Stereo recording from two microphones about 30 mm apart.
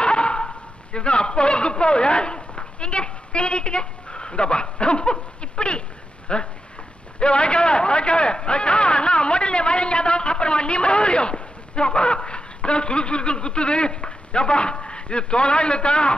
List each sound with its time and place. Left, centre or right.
0.0 s dog: left
7.2 s a man's voice: left